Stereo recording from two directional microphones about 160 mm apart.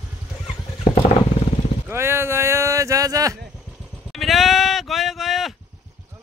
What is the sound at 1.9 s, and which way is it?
Speech, 15° right (ahead or behind).